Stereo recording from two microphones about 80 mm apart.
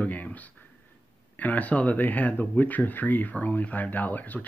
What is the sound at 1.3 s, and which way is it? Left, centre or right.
Speech, left.